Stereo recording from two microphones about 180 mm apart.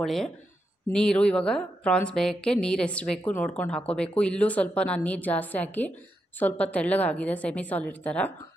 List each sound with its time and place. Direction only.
0.0 s a woman's voice: centre (ahead or behind)